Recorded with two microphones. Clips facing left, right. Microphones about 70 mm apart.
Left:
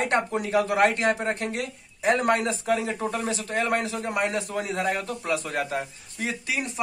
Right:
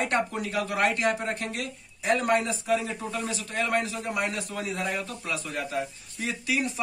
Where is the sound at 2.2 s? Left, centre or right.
Left.